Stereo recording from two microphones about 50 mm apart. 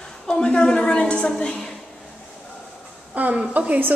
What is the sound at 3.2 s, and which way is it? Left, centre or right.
Speech, right.